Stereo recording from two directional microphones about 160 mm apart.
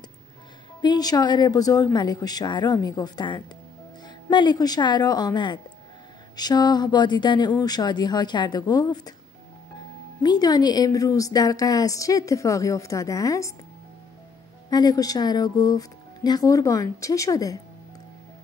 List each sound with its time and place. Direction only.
0.8 s a woman's voice: 25° left (ahead or behind)
10.2 s a woman's voice: 25° left (ahead or behind)
14.7 s a woman's voice: 25° left (ahead or behind)